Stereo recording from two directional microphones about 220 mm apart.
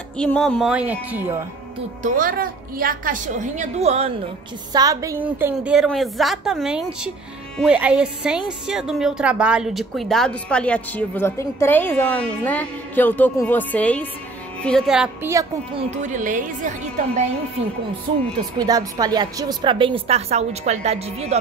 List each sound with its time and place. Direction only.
0.2 s speech: 5° left (ahead or behind)
2.0 s a woman's voice: 40° right (ahead or behind)
4.7 s speech: 15° right (ahead or behind)
15.3 s a woman's voice: 25° right (ahead or behind)
18.6 s a woman's voice: 15° right (ahead or behind)